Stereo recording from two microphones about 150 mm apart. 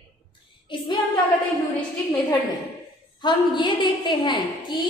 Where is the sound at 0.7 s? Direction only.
35° left (ahead or behind).